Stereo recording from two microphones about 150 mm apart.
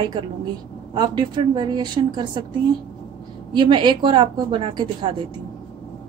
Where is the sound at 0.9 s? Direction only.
30° right (ahead or behind).